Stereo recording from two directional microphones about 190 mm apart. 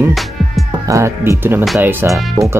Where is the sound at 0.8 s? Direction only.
15° right (ahead or behind).